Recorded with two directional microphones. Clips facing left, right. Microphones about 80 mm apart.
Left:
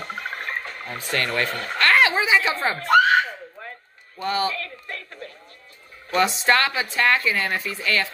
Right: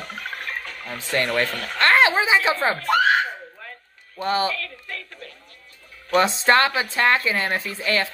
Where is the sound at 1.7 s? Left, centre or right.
Right.